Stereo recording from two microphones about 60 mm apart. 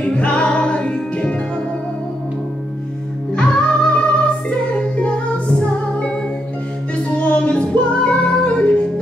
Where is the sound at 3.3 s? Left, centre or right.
Centre.